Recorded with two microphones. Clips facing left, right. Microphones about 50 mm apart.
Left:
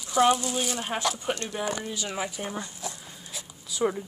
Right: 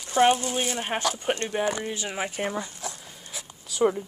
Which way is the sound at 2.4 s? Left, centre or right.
Right.